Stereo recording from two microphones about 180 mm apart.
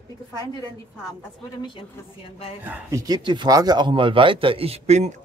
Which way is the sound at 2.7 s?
10° right (ahead or behind).